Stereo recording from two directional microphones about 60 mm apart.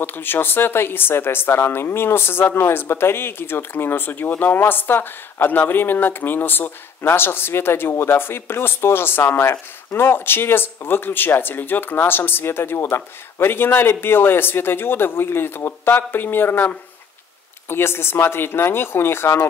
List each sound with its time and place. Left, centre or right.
0.0 s speech: left